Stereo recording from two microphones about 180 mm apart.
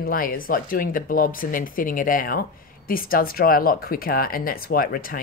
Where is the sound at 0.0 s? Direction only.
55° left (ahead or behind).